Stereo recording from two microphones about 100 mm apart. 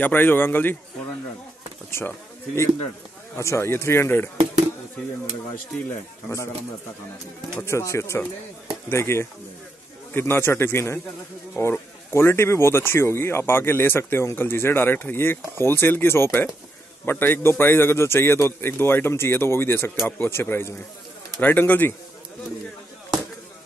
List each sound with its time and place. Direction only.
0.0 s speech: 20° left (ahead or behind)
1.9 s a man's voice: 25° left (ahead or behind)
7.5 s speech: 30° left (ahead or behind)